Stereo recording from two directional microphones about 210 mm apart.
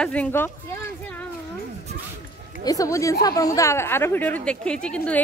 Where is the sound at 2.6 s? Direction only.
15° left (ahead or behind).